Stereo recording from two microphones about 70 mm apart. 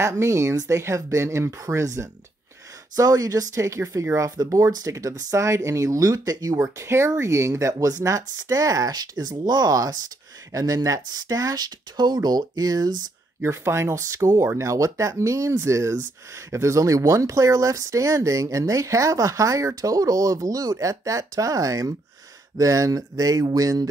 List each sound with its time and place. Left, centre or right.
0.0 s speech: right
3.0 s speech: right
6.5 s speech: right
10.5 s speech: right
13.4 s speech: right